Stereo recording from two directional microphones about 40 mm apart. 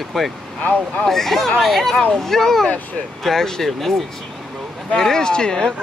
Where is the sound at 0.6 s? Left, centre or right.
Left.